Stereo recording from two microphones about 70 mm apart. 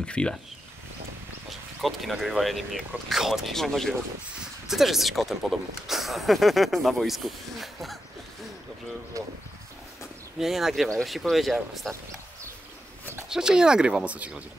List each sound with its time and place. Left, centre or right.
0.0 s speech: centre
1.5 s speech: centre
9.1 s speech: right
10.4 s speech: centre
13.3 s speech: centre